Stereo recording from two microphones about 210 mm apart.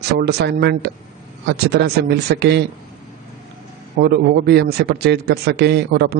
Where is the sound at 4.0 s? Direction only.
50° right (ahead or behind).